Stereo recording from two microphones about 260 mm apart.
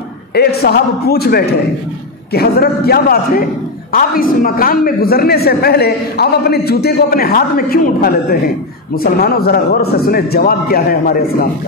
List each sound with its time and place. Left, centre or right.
0.3 s a man's voice: left